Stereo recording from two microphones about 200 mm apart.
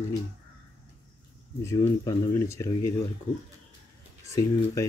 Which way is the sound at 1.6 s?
15° left (ahead or behind).